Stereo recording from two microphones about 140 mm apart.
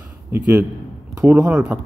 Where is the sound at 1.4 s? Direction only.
5° right (ahead or behind).